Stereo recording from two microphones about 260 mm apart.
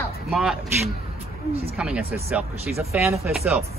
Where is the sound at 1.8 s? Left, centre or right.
Centre.